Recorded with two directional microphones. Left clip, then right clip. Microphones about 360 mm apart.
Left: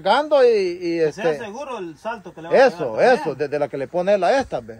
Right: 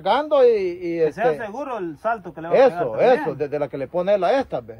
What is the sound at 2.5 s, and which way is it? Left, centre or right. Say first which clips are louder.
A man's voice: left 1 dB; left.